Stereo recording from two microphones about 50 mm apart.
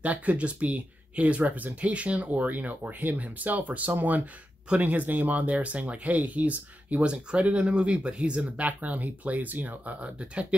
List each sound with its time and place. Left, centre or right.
0.0 s speech: right
7.1 s speech: right